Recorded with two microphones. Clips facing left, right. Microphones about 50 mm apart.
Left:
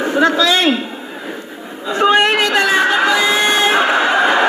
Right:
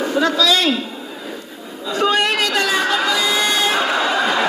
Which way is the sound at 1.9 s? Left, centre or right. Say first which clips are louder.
Left 5 dB; left.